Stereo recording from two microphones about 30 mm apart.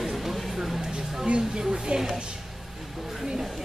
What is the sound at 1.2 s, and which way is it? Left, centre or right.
Speech, right.